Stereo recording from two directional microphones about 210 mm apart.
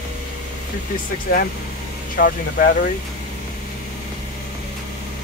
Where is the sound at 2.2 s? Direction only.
45° left (ahead or behind).